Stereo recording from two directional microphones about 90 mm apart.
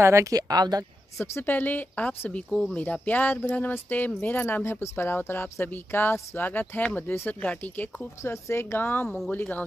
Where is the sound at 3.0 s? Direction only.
20° left (ahead or behind).